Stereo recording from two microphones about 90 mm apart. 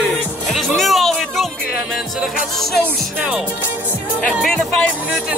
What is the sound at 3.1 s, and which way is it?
Music, 20° right (ahead or behind).